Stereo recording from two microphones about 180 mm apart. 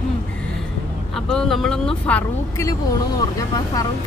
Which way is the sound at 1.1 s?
Centre (ahead or behind).